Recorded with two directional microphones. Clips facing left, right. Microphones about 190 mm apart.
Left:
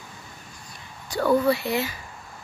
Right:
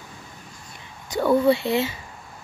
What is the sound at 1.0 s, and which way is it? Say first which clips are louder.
Speech: right 2 dB; 20° right (ahead or behind).